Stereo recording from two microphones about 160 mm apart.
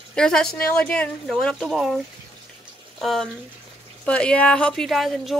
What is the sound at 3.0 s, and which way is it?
Speech, centre (ahead or behind).